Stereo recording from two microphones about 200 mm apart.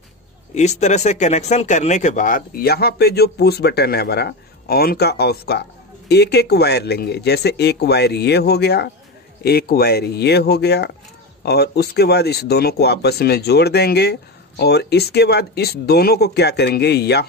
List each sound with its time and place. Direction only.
0.6 s speech: 35° left (ahead or behind); by 17.3 s 55° left (ahead or behind)